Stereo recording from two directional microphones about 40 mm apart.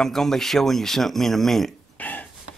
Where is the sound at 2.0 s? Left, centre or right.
Left.